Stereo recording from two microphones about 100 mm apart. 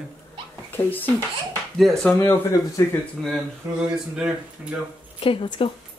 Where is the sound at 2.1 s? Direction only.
25° left (ahead or behind).